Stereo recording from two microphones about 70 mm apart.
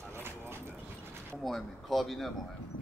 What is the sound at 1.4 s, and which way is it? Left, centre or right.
Speech, centre.